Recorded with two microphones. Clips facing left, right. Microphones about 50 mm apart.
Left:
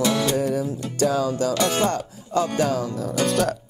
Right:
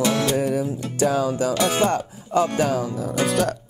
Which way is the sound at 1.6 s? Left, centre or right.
Centre.